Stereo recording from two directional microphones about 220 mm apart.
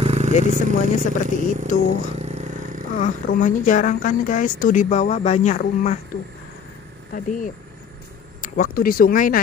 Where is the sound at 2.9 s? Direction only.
35° left (ahead or behind).